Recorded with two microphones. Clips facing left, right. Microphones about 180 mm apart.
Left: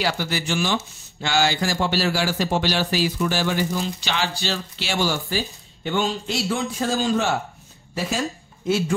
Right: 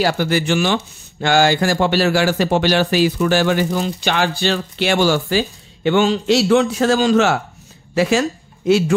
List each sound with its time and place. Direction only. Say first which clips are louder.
0.0 s speech: right 7 dB; 50° right (ahead or behind); by 8.9 s 80° right